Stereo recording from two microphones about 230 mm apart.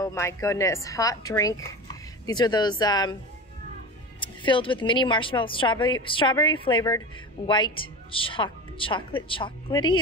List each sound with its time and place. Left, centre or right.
0.0 s a woman's voice: centre
4.2 s speech: left